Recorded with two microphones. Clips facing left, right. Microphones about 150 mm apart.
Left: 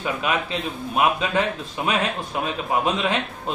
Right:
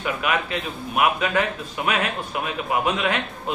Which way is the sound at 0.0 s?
25° left (ahead or behind).